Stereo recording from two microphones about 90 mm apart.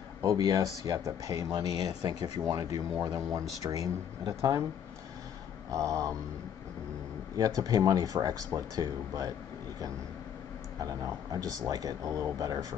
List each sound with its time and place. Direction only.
0.2 s speech: 40° right (ahead or behind)
5.7 s speech: 40° right (ahead or behind)
7.3 s speech: 40° right (ahead or behind)
10.8 s speech: 40° right (ahead or behind)